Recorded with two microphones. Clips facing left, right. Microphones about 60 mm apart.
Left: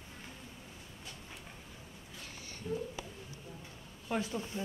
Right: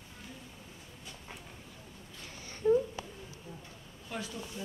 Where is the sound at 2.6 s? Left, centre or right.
Right.